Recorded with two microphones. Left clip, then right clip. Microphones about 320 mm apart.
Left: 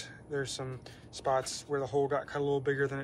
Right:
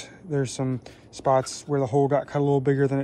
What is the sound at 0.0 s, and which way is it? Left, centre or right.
Speech, centre.